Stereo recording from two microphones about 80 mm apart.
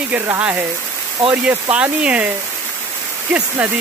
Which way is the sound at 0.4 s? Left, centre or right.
Right.